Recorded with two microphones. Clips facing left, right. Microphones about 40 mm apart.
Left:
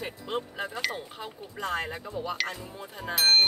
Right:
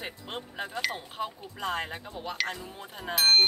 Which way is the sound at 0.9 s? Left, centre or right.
Right.